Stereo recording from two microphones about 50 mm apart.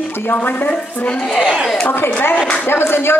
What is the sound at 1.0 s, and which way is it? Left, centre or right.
Speech, centre.